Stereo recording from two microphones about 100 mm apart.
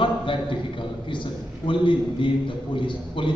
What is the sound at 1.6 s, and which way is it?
A man's voice, 55° left (ahead or behind).